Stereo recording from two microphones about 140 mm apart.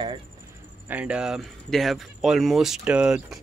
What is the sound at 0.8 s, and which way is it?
Speech, 10° right (ahead or behind).